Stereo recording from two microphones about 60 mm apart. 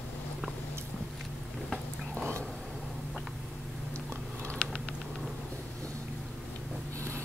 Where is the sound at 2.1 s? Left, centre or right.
Centre.